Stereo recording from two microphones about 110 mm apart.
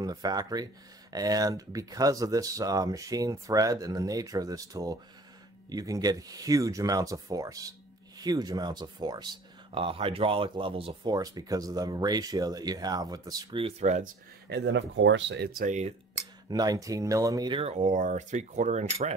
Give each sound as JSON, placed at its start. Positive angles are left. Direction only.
{"t": 0.0, "sound": "speech", "side_deg": -35}
{"t": 9.8, "sound": "speech", "side_deg": -55}
{"t": 11.1, "sound": "speech", "side_deg": -35}
{"t": 13.5, "sound": "speech", "side_deg": -60}
{"t": 16.4, "sound": "speech", "side_deg": -35}
{"t": 17.6, "sound": "speech", "side_deg": -80}